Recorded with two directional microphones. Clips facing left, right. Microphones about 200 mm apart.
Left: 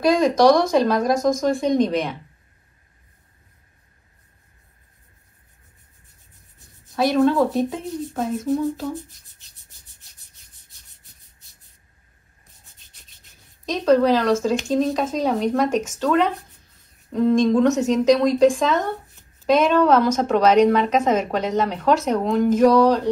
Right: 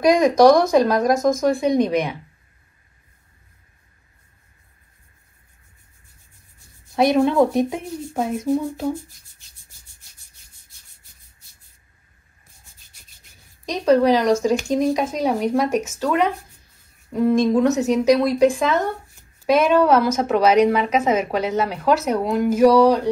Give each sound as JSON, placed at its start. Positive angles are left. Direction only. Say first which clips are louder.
{"t": 0.0, "sound": "a woman's voice", "louder": "right 2 dB", "side_deg": -10}
{"t": 7.0, "sound": "a woman's voice", "louder": "right 1 dB", "side_deg": -15}
{"t": 13.7, "sound": "a woman's voice", "louder": "right 1 dB", "side_deg": -10}